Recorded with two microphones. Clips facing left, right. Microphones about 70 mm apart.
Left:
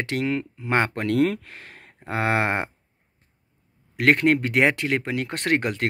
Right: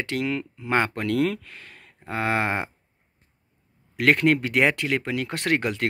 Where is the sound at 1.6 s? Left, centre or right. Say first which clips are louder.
Left 2 dB; left.